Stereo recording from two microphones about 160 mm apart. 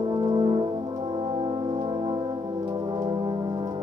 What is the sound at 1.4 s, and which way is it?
Brass instrument, 30° right (ahead or behind).